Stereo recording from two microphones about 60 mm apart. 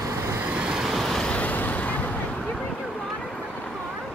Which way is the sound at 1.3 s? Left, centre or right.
Left.